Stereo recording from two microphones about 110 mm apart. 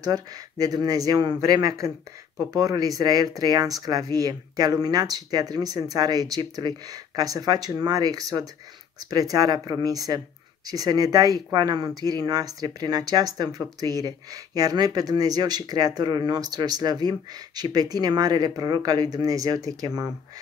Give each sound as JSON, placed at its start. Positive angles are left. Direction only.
{"t": 0.0, "sound": "speech", "side_deg": -35}